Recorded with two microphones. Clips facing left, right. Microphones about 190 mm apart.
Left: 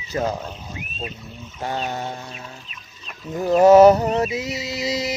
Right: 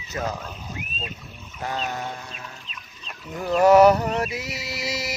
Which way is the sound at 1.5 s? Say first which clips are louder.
Left 3 dB; 30° left (ahead or behind).